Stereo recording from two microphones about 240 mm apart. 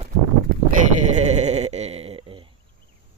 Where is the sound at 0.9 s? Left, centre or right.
Right.